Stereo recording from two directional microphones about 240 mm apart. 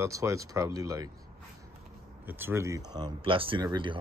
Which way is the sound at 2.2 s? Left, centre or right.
Centre.